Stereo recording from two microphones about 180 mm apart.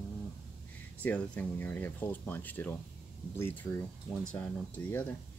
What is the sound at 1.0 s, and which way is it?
Speech, 10° left (ahead or behind).